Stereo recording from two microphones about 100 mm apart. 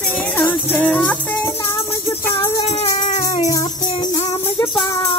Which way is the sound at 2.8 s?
90° left.